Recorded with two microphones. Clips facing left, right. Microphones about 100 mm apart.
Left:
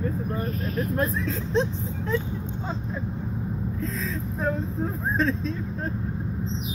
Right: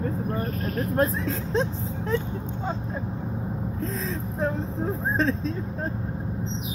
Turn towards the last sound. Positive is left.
turn(degrees=-35)  # may be behind; listen again after turning